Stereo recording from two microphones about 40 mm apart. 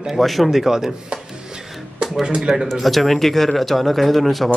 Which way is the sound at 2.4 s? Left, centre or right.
Centre.